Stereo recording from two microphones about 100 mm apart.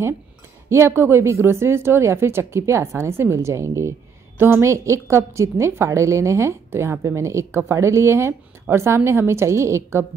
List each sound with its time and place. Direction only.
0.7 s a woman's voice: 25° right (ahead or behind)